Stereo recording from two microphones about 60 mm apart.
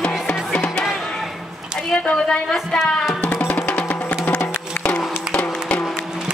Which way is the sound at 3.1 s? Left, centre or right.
Left.